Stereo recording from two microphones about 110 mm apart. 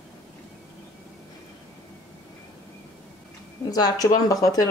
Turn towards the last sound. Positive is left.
turn(degrees=30)  # may be behind; listen again after turning